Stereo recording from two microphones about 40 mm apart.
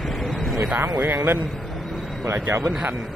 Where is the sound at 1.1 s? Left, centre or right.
Right.